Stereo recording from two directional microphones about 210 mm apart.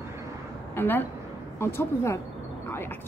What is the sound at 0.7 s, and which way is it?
A woman's voice, 10° left (ahead or behind).